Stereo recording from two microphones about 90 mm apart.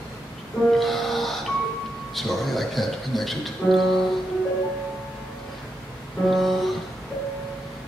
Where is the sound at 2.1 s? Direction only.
Centre (ahead or behind).